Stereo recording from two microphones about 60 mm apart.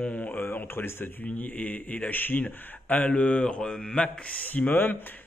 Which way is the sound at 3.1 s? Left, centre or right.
Centre.